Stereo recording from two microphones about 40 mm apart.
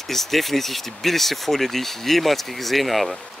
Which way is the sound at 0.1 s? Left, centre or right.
Centre.